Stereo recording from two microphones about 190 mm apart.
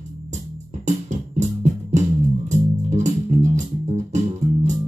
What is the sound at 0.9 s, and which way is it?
Music, 40° right (ahead or behind).